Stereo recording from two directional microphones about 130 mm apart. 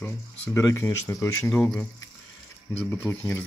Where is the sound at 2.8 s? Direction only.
20° left (ahead or behind).